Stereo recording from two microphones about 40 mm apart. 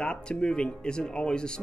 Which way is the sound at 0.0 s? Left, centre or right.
Left.